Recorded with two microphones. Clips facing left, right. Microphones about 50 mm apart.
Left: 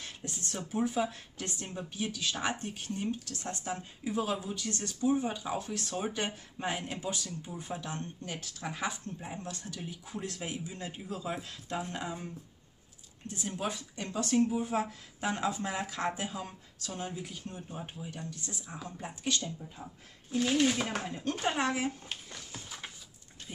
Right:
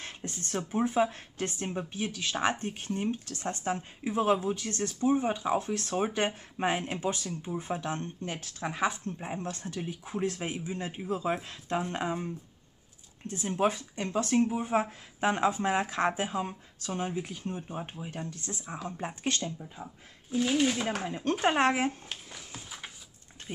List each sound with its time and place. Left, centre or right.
0.0 s speech: right
13.3 s speech: right
19.6 s speech: centre
20.2 s speech: centre
21.1 s speech: right
22.0 s a sound: centre